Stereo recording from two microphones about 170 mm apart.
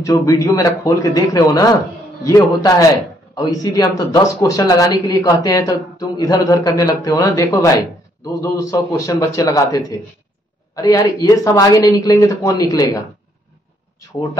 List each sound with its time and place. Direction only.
0.0 s speech: 20° left (ahead or behind)